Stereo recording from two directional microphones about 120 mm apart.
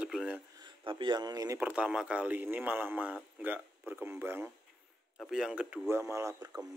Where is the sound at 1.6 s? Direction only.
10° right (ahead or behind).